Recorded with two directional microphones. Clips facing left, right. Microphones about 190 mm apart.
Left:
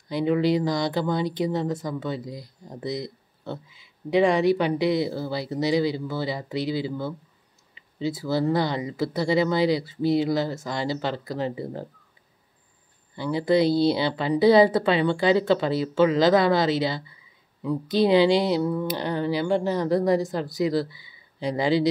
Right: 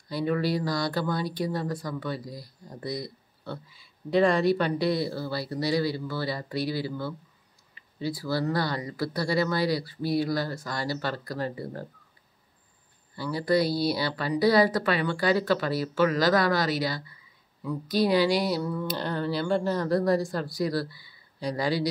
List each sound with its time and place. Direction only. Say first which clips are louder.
0.1 s speech: left 5 dB; 20° left (ahead or behind)
13.1 s speech: left 3 dB; 20° left (ahead or behind)